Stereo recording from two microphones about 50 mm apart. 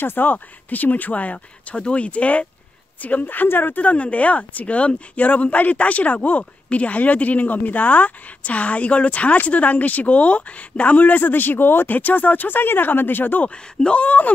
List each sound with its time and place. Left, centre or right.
0.0 s speech: left
3.8 s speech: left
13.7 s speech: left